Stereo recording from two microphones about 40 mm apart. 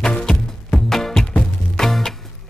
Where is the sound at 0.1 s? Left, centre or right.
Centre.